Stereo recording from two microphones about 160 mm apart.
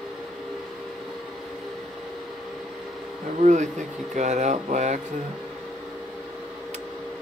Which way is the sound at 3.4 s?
50° right (ahead or behind).